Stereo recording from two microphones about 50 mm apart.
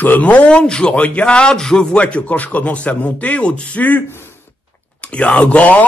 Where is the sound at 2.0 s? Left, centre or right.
Left.